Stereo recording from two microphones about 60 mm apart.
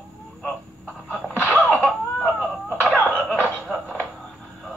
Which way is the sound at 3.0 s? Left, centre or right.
Centre.